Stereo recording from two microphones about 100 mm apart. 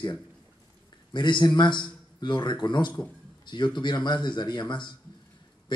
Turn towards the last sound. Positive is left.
turn(degrees=50)  # may be behind; listen again after turning